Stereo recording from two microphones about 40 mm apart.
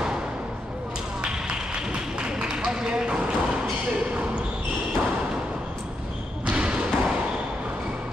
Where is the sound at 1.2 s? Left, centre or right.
Right.